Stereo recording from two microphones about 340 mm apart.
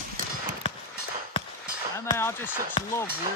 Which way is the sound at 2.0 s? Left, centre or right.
Centre.